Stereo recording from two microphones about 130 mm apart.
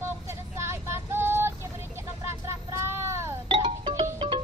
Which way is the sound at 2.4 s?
20° right (ahead or behind).